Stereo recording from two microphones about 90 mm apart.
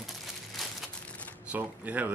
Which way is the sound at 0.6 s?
Centre (ahead or behind).